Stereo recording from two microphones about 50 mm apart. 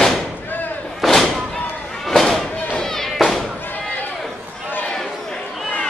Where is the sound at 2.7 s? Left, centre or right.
Centre.